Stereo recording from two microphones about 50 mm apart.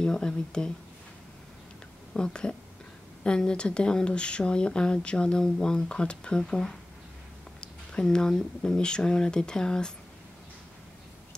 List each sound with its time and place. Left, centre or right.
0.0 s speech: centre
2.1 s speech: centre